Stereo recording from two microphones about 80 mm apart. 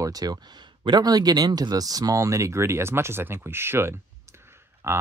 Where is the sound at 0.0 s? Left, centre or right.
Right.